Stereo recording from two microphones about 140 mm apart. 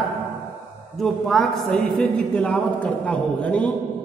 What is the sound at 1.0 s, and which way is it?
A man's voice, centre (ahead or behind).